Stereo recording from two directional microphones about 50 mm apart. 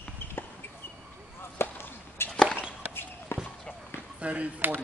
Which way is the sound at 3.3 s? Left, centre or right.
Left.